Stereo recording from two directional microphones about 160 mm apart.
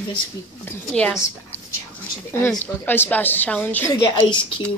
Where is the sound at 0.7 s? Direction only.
10° left (ahead or behind).